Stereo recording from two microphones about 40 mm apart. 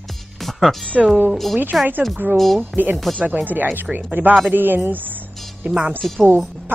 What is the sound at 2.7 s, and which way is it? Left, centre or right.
Speech, right.